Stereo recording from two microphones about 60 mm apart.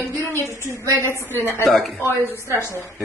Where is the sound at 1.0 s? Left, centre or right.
Left.